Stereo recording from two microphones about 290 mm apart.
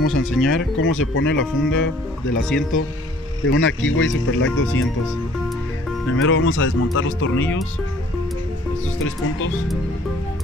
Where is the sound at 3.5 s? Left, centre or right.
Left.